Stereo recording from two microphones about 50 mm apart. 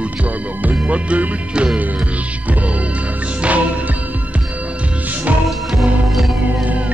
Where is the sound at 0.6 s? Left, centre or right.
Right.